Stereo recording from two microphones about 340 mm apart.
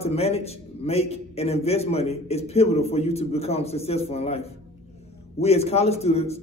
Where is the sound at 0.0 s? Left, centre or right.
Centre.